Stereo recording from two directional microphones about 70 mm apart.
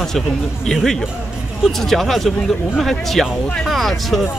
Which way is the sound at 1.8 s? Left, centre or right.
Centre.